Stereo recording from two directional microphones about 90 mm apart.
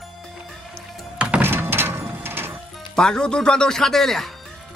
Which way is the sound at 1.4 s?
25° right (ahead or behind).